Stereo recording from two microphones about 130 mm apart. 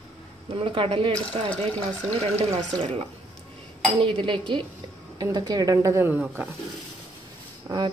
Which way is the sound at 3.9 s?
45° right (ahead or behind).